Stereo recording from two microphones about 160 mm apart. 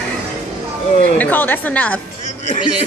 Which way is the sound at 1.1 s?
10° left (ahead or behind).